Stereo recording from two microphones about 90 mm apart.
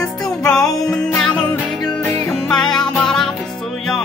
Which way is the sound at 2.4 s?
5° left (ahead or behind).